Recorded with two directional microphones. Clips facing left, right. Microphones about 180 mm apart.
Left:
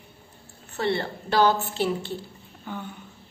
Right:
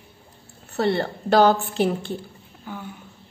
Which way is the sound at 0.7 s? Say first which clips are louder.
Right 4 dB; 40° right (ahead or behind).